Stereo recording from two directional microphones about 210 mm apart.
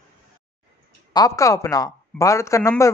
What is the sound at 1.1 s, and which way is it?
Speech, 15° left (ahead or behind).